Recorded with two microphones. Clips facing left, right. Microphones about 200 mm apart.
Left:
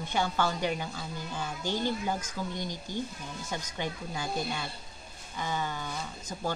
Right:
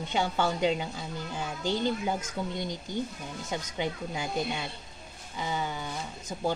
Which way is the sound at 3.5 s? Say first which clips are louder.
Right 4 dB; 15° right (ahead or behind).